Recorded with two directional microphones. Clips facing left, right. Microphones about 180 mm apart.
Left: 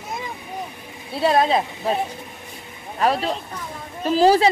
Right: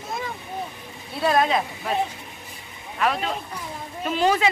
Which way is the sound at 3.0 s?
35° left (ahead or behind).